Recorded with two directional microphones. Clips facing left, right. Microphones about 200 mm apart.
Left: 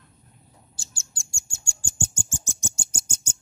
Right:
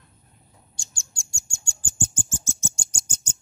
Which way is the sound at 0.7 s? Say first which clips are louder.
Left 1 dB; centre (ahead or behind).